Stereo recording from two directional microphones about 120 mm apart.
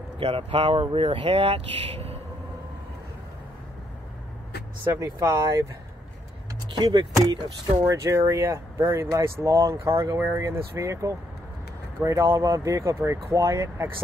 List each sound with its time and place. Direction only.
0.2 s speech: 55° right (ahead or behind)
4.9 s speech: 25° right (ahead or behind)
6.8 s speech: 40° right (ahead or behind)
7.8 s speech: 25° right (ahead or behind)